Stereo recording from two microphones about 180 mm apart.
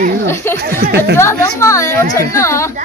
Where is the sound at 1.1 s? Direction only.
15° left (ahead or behind).